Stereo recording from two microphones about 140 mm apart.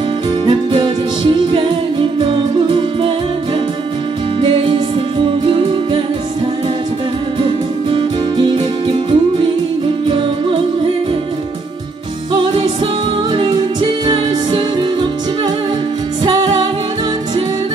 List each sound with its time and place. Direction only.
0.5 s music: 35° right (ahead or behind)
4.4 s music: 40° right (ahead or behind)
7.4 s music: 35° right (ahead or behind)
13.3 s music: 35° right (ahead or behind)